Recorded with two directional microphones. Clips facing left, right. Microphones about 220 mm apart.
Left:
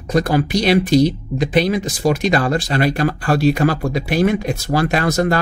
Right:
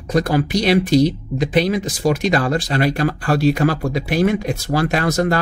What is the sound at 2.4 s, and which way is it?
Speech, 40° left (ahead or behind).